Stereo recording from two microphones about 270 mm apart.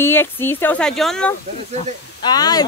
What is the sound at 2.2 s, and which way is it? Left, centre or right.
Speech, centre.